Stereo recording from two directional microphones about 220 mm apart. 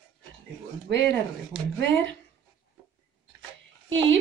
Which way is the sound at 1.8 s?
55° right (ahead or behind).